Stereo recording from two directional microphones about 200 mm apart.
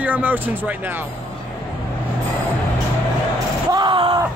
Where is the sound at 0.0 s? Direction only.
10° right (ahead or behind).